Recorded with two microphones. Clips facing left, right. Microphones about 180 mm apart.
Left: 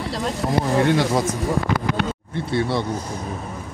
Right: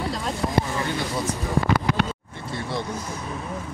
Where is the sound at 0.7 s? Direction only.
70° left (ahead or behind).